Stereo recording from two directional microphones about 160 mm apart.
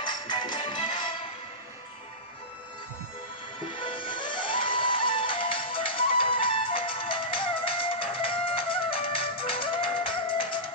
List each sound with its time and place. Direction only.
0.0 s music: 30° left (ahead or behind)
3.7 s music: 30° left (ahead or behind)